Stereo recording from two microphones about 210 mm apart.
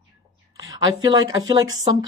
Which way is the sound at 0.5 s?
20° right (ahead or behind).